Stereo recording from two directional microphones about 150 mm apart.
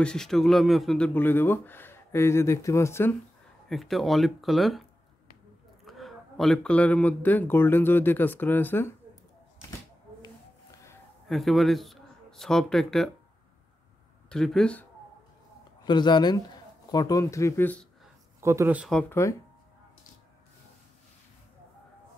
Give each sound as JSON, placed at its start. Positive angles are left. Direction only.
{"t": 0.0, "sound": "speech", "side_deg": 5}
{"t": 3.6, "sound": "speech", "side_deg": 0}
{"t": 5.9, "sound": "speech", "side_deg": 0}
{"t": 10.2, "sound": "a sound", "side_deg": 20}
{"t": 11.2, "sound": "speech", "side_deg": 0}
{"t": 14.3, "sound": "speech", "side_deg": 5}
{"t": 15.8, "sound": "speech", "side_deg": 30}
{"t": 18.4, "sound": "speech", "side_deg": -20}
{"t": 19.0, "sound": "speech", "side_deg": 20}